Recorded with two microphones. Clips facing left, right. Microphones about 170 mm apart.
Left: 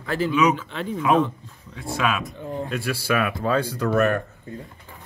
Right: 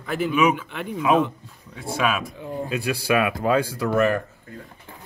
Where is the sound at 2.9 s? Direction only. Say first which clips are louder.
Right 3 dB; 15° right (ahead or behind).